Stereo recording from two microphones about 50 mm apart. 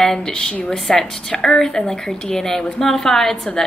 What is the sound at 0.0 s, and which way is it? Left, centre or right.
A woman's voice, centre.